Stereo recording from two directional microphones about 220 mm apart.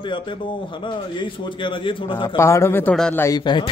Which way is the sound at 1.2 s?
20° left (ahead or behind).